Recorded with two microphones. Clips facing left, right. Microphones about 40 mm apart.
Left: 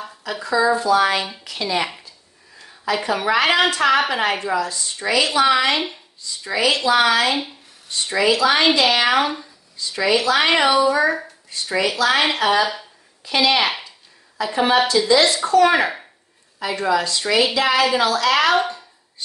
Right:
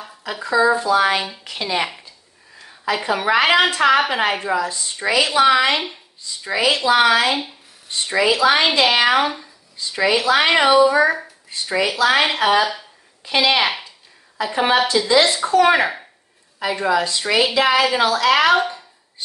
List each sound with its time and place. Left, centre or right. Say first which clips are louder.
0.2 s speech: right 2 dB; centre
2.8 s speech: right 1 dB; centre
9.0 s speech: right 1 dB; centre
9.8 s speech: right 1 dB; centre
12.4 s speech: right 1 dB; right
15.7 s a child's voice: right 1 dB; centre
16.5 s speech: right 1 dB; centre